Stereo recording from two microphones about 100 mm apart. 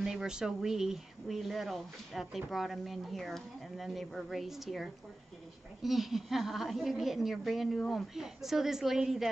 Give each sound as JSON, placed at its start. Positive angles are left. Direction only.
{"t": 0.0, "sound": "speech", "side_deg": -5}